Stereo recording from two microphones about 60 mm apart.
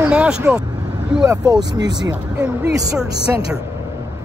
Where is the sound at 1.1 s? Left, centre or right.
Centre.